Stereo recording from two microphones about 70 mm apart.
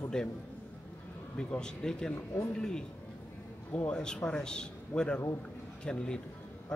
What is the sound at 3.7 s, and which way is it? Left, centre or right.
A man's voice, left.